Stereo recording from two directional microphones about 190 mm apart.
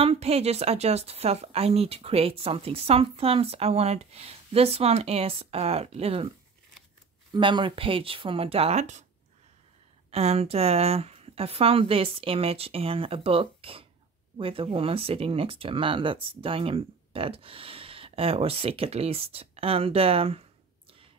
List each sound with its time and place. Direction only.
0.0 s a woman's voice: 30° right (ahead or behind)
7.3 s speech: 25° right (ahead or behind)
10.1 s a woman's voice: 30° right (ahead or behind)